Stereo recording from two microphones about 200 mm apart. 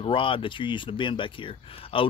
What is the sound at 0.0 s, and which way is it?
Speech, 25° left (ahead or behind).